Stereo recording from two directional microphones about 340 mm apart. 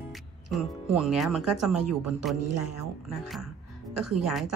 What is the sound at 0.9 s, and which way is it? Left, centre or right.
Speech, centre.